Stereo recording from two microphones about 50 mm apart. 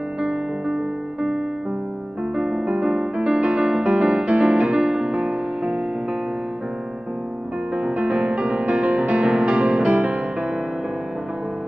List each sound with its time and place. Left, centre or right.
2.3 s music: centre
7.7 s music: right